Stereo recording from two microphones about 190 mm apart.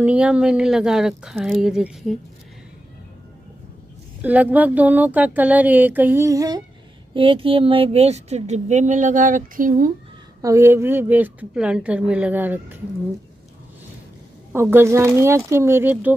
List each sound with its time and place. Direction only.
0.0 s speech: 5° right (ahead or behind)
4.2 s speech: 10° right (ahead or behind); by 9.9 s 45° right (ahead or behind)
10.4 s speech: 15° right (ahead or behind)
14.5 s speech: 10° right (ahead or behind)